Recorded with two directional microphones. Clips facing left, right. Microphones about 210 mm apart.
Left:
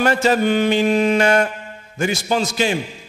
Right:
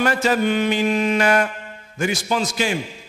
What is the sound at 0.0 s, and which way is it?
A man's voice, 25° left (ahead or behind).